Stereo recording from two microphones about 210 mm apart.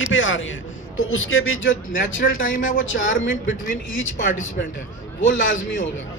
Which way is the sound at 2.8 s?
65° left (ahead or behind).